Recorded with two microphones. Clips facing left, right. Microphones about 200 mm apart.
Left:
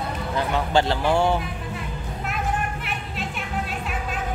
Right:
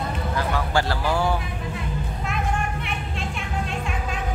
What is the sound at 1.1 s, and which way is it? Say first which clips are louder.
Vehicle: left 3 dB; 25° left (ahead or behind).